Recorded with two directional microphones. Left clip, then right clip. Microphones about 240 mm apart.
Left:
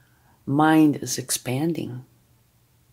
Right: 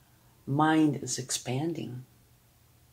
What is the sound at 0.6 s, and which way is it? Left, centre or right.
Speech, left.